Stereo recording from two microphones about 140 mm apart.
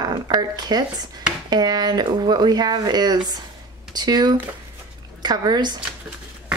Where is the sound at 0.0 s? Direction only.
30° right (ahead or behind).